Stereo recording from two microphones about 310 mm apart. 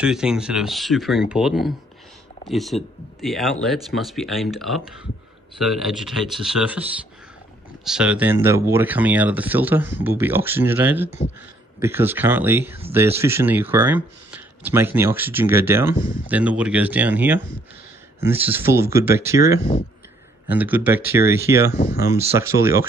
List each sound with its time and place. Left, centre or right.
0.0 s speech: centre
7.8 s speech: centre
21.7 s speech: left
22.4 s speech: centre